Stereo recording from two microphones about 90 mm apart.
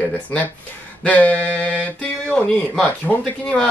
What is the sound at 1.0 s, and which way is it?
Speech, 15° left (ahead or behind).